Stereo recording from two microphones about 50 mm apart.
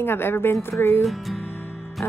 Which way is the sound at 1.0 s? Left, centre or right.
Centre.